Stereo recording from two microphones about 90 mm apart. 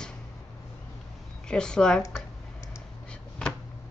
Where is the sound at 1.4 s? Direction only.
10° left (ahead or behind).